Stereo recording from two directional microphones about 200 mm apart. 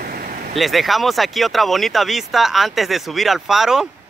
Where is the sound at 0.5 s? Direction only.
Centre (ahead or behind).